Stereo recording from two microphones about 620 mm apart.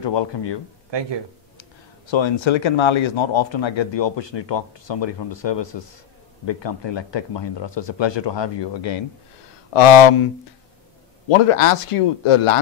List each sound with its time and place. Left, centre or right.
0.0 s a man's voice: left
0.8 s speech: right
1.6 s speech: left
9.8 s speech: left